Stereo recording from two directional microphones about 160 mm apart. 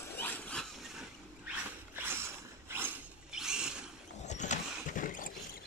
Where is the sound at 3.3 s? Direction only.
5° right (ahead or behind).